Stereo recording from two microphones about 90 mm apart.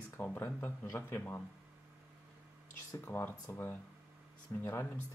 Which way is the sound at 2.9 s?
25° left (ahead or behind).